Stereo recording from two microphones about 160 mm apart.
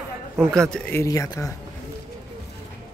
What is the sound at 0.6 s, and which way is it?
Speech, 5° left (ahead or behind).